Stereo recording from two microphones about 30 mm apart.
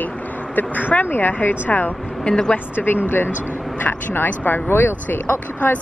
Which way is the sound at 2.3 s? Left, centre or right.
Left.